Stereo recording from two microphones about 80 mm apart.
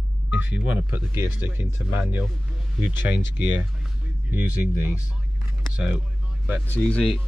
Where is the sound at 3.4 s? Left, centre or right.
Right.